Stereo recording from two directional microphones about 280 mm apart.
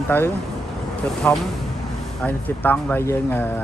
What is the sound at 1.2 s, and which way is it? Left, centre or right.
Speech, centre.